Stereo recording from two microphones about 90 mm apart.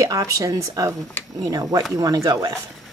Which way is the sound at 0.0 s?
40° right (ahead or behind).